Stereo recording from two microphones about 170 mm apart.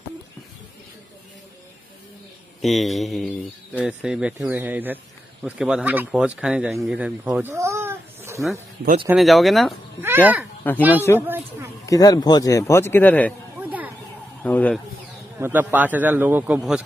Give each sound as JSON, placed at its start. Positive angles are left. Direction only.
{"t": 2.6, "sound": "speech", "side_deg": 0}
{"t": 9.1, "sound": "speech", "side_deg": 0}
{"t": 10.0, "sound": "a man's voice", "side_deg": -10}
{"t": 11.1, "sound": "a sound", "side_deg": -10}
{"t": 11.8, "sound": "a man's voice", "side_deg": 20}
{"t": 13.6, "sound": "a sound", "side_deg": -10}
{"t": 14.4, "sound": "speech", "side_deg": 10}
{"t": 15.3, "sound": "a man's voice", "side_deg": -10}